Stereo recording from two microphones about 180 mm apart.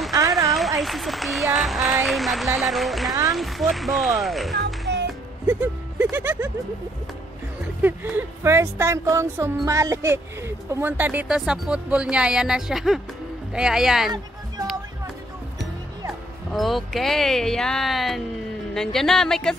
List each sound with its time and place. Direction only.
0.5 s speech: centre (ahead or behind)
4.9 s music: 75° right (ahead or behind)
5.5 s speech: 10° right (ahead or behind)
7.8 s speech: 15° right (ahead or behind)
16.5 s speech: centre (ahead or behind)